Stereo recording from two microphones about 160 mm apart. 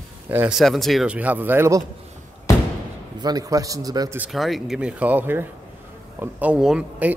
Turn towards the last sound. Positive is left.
turn(degrees=-5)  # may be behind; listen again after turning